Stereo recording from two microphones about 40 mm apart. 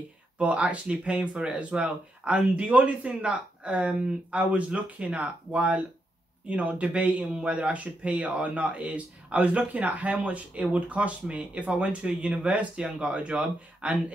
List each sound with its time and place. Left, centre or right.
0.4 s speech: right